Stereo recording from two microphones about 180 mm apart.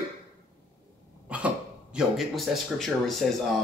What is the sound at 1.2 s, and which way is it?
Speech, 5° right (ahead or behind).